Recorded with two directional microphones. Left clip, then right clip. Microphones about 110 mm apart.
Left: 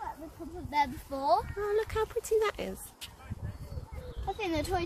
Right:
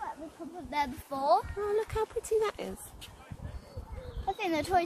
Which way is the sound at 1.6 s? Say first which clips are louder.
Even; centre (ahead or behind).